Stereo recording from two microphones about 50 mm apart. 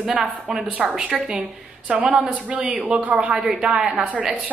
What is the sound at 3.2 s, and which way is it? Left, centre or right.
Speech, centre.